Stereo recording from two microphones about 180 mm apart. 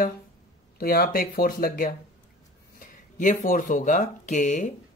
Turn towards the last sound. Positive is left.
turn(degrees=40)  # may be behind; listen again after turning